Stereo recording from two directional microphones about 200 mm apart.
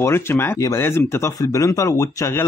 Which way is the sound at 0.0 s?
10° left (ahead or behind).